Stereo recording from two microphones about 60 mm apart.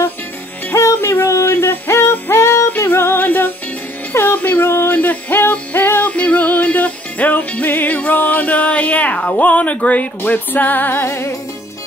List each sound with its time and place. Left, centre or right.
0.7 s music: left
2.9 s music: left